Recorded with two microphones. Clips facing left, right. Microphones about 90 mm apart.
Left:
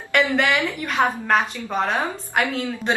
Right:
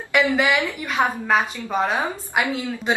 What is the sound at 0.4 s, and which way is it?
A woman's voice, 5° right (ahead or behind).